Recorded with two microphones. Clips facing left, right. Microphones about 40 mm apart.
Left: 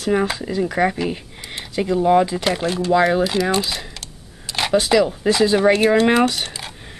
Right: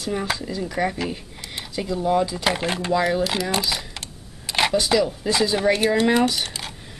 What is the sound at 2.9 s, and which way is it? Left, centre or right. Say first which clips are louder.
Speech: left 5 dB; left.